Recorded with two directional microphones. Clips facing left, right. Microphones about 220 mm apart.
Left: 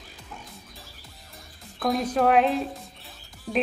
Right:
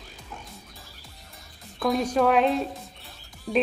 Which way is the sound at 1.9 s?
Centre (ahead or behind).